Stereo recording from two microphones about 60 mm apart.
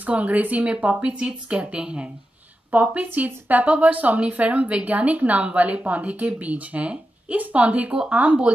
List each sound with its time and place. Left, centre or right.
0.0 s speech: right
2.7 s speech: right